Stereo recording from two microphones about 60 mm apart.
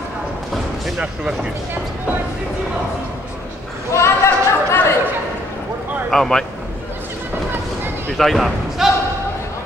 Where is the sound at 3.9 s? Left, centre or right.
Left.